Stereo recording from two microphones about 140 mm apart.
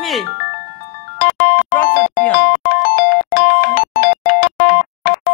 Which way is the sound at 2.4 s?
90° left.